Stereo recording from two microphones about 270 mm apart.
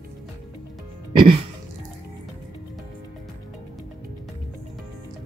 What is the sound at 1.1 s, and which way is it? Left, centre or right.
Music, centre.